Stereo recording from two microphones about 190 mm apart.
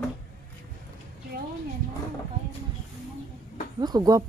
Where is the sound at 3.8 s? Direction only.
20° right (ahead or behind).